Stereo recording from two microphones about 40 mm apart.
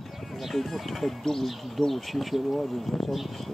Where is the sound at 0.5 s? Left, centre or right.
Centre.